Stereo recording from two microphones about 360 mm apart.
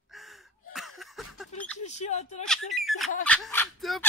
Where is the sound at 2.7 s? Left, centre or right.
Centre.